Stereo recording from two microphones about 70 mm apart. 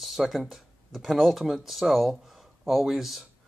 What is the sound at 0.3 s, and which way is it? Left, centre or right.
Speech, centre.